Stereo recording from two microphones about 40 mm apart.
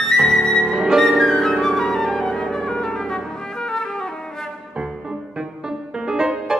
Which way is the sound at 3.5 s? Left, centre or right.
Centre.